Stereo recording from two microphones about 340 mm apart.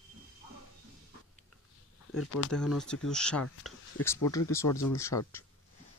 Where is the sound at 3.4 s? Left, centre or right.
Left.